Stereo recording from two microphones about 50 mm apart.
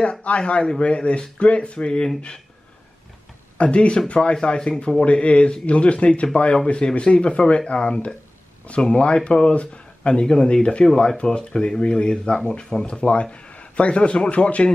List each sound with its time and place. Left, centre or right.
0.0 s speech: left
3.5 s a man's voice: left